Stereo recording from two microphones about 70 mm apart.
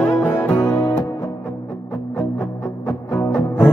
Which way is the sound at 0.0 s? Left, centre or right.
Left.